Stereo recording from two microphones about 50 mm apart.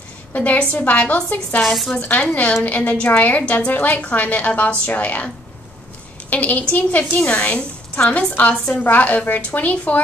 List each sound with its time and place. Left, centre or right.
0.3 s a woman's voice: left
1.6 s speech: centre
2.0 s a woman's voice: left
6.3 s a woman's voice: left